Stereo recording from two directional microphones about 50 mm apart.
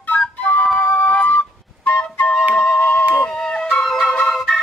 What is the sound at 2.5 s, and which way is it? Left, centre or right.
Music, left.